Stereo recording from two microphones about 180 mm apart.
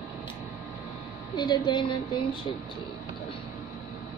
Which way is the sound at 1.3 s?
25° left (ahead or behind).